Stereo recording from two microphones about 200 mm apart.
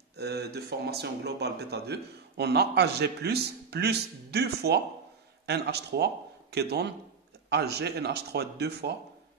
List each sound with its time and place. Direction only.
0.1 s a man's voice: 55° right (ahead or behind)